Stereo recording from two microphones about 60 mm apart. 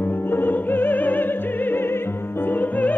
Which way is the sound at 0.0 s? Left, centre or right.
Left.